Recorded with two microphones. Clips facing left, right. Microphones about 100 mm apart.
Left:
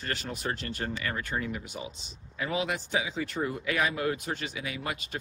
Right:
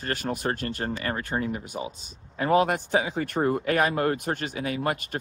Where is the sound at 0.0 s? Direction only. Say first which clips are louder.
Right 6 dB; 45° right (ahead or behind).